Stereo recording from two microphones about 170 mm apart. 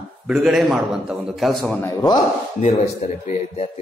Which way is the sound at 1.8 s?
25° left (ahead or behind).